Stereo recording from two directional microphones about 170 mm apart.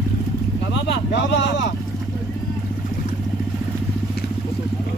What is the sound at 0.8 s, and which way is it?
Speech, 90° left.